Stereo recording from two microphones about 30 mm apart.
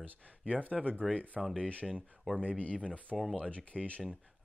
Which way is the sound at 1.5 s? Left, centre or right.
Left.